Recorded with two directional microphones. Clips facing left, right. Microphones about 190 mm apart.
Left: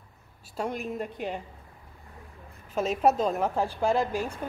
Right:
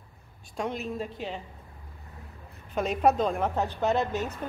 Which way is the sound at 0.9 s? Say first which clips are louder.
Left 1 dB; 55° left (ahead or behind).